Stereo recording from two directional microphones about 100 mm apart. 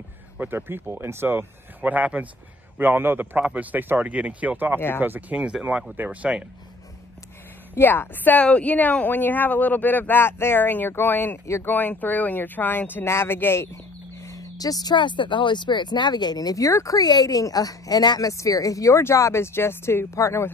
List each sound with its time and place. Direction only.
0.4 s speech: 20° right (ahead or behind)
4.7 s speech: 20° left (ahead or behind)
5.0 s speech: 15° right (ahead or behind)
7.7 s speech: 20° left (ahead or behind)
14.2 s speech: 35° left (ahead or behind)